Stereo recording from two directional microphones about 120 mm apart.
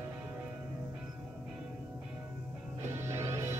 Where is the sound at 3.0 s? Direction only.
20° right (ahead or behind).